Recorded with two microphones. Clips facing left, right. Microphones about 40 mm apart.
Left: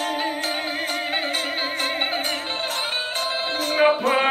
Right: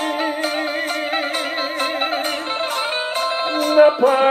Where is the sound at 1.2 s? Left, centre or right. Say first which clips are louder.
Right 3 dB; centre.